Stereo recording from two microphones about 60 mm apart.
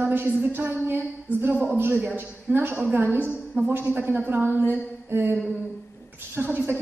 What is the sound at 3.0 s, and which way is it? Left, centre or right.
A woman's voice, right.